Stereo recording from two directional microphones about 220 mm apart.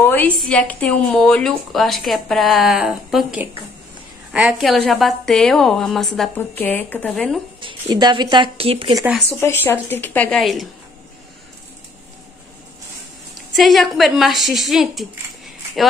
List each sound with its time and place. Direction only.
0.0 s a woman's voice: 10° left (ahead or behind)
7.6 s speech: 20° right (ahead or behind)
9.3 s a woman's voice: 10° left (ahead or behind)
13.3 s a woman's voice: centre (ahead or behind)